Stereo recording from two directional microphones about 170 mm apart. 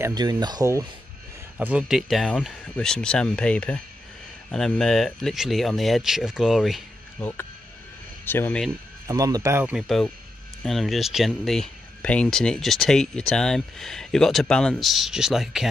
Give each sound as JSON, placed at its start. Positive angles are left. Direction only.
{"t": 0.0, "sound": "speech", "side_deg": -25}
{"t": 1.6, "sound": "speech", "side_deg": -5}
{"t": 7.2, "sound": "speech", "side_deg": 10}
{"t": 9.0, "sound": "speech", "side_deg": -20}